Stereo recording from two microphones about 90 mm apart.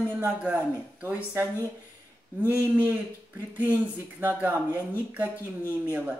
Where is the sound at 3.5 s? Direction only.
20° right (ahead or behind).